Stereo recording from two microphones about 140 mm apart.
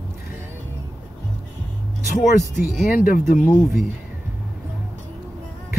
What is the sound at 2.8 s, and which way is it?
Speech, 70° left (ahead or behind).